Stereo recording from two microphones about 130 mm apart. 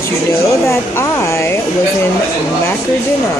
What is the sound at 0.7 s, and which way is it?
Speech, 20° left (ahead or behind).